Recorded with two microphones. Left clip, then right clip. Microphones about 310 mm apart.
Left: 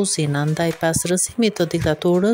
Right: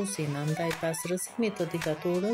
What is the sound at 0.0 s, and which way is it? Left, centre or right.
Speech, left.